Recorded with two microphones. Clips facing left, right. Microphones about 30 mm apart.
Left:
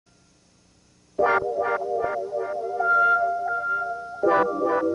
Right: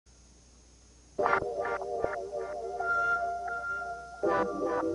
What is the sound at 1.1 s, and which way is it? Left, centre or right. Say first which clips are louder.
Music: left 7 dB; left.